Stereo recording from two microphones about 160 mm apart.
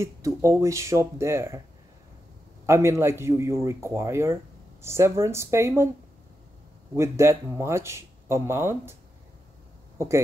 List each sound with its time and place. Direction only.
0.0 s speech: 20° right (ahead or behind)
2.6 s speech: 15° right (ahead or behind)
7.0 s speech: 15° right (ahead or behind)
9.9 s speech: 20° right (ahead or behind)